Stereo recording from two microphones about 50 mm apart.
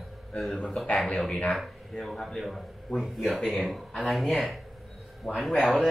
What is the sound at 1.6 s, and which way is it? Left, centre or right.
A man's voice, centre.